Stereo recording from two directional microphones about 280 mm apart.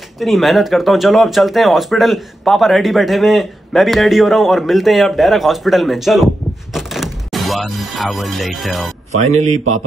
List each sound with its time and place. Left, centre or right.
0.2 s speech: centre
9.3 s a man's voice: right